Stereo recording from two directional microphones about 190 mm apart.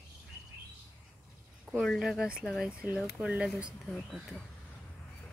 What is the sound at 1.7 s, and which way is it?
Speech, centre (ahead or behind).